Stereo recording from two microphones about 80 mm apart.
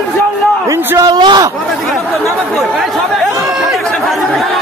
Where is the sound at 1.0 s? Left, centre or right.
Right.